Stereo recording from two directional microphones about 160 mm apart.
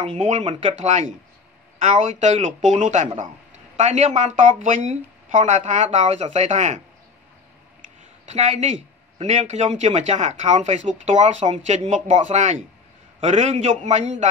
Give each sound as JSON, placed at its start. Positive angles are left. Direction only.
{"t": 0.2, "sound": "speech", "side_deg": -45}
{"t": 8.3, "sound": "speech", "side_deg": -45}